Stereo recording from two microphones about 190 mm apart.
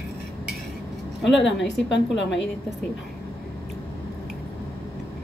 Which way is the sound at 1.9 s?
70° left (ahead or behind).